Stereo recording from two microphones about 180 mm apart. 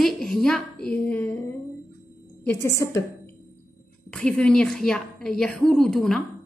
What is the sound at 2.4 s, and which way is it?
Speech, 15° left (ahead or behind).